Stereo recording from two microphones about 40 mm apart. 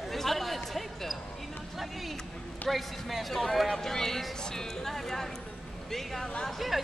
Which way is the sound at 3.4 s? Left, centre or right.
Centre.